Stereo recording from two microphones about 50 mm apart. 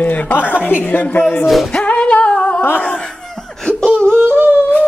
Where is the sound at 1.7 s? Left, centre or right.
Left.